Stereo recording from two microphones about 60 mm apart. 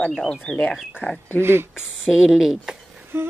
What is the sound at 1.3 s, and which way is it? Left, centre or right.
Speech, right.